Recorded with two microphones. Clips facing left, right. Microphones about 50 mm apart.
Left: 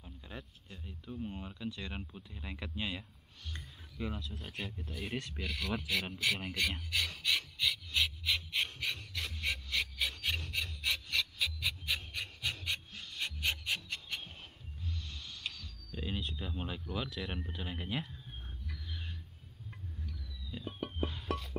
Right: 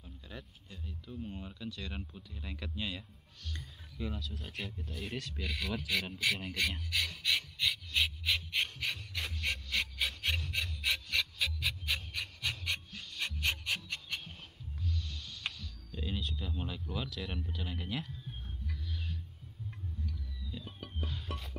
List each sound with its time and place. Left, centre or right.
0.0 s a sound: centre
1.0 s speech: centre
7.2 s pant: centre
13.2 s filing: centre
15.0 s music: centre
15.5 s a sound: centre
16.9 s speech: centre
20.5 s music: centre